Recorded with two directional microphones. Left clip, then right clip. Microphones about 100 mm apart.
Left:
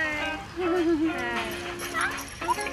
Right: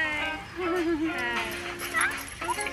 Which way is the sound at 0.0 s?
25° right (ahead or behind).